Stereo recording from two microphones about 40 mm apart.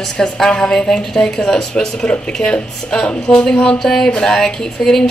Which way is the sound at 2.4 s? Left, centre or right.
Left.